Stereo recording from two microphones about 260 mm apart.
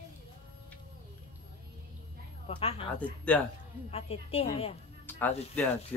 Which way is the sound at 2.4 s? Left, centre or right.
Left.